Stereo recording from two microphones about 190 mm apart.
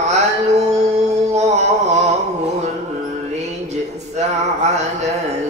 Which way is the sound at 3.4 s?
35° right (ahead or behind).